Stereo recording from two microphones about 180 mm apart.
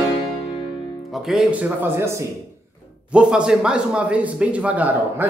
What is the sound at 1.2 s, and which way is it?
Speech, 5° right (ahead or behind).